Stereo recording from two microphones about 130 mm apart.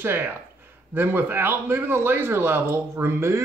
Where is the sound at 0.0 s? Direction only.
15° right (ahead or behind).